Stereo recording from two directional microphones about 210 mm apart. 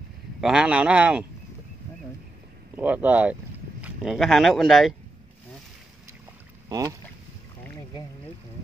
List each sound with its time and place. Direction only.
0.4 s speech: 5° right (ahead or behind)
2.7 s speech: 10° right (ahead or behind)
6.7 s speech: 15° right (ahead or behind)